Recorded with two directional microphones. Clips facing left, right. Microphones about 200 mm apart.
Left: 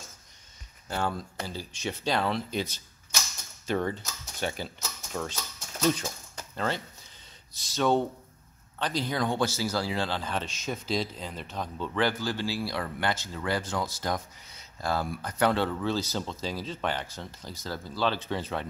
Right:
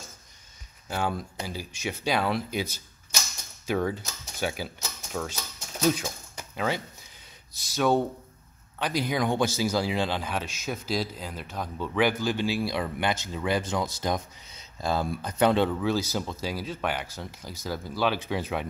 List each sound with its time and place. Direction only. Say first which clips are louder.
0.8 s speech: right 1 dB; 10° right (ahead or behind)